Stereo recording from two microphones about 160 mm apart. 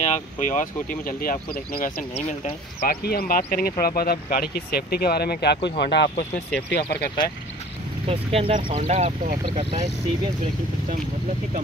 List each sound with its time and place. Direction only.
0.0 s speech: 55° left (ahead or behind)
2.9 s speech: 70° left (ahead or behind); by 7.1 s 90° left
8.1 s speech: 35° right (ahead or behind)
8.8 s speech: 45° right (ahead or behind)
9.5 s speech: 30° right (ahead or behind)